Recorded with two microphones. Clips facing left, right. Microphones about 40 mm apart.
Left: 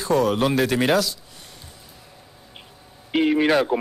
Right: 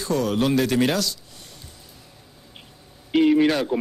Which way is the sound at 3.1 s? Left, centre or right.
Centre.